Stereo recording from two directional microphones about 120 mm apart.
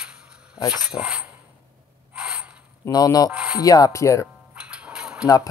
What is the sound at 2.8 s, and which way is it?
Speech, 30° left (ahead or behind).